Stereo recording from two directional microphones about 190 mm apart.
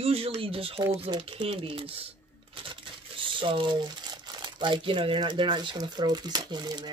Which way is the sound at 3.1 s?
25° right (ahead or behind).